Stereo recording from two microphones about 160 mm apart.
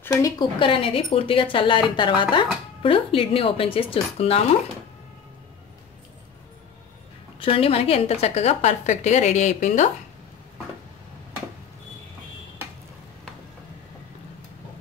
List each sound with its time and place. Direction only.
0.0 s speech: 20° left (ahead or behind); by 4.4 s 35° left (ahead or behind)
7.3 s a woman's voice: 35° left (ahead or behind)